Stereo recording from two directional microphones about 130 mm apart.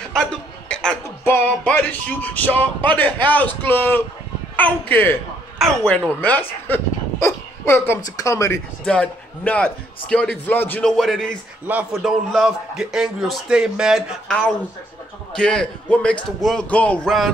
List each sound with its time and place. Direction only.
0.1 s chuckle: 5° left (ahead or behind)
1.0 s music: 20° left (ahead or behind)
4.6 s a man's voice: 15° left (ahead or behind)
7.2 s a sound: 20° left (ahead or behind)
7.9 s speech: 25° left (ahead or behind)
8.8 s a man's voice: 10° left (ahead or behind)
11.6 s speech: 10° right (ahead or behind)
12.0 s a man's voice: centre (ahead or behind)